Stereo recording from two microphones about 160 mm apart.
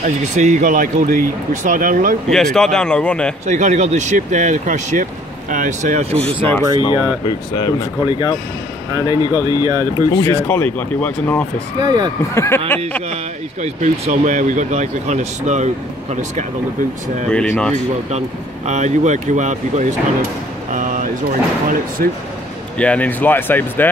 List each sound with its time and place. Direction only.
0.0 s speech: 50° right (ahead or behind)
2.2 s speech: 5° left (ahead or behind)
3.4 s speech: 50° right (ahead or behind)
6.8 s speech: 30° left (ahead or behind)
9.6 s speech: 20° right (ahead or behind)
10.1 s speech: 10° left (ahead or behind)
11.8 s speech: 25° right (ahead or behind)
12.4 s speech: 15° left (ahead or behind)
13.1 s speech: 45° right (ahead or behind)
17.3 s speech: 5° left (ahead or behind)
18.7 s speech: 50° right (ahead or behind)
22.8 s speech: 10° left (ahead or behind)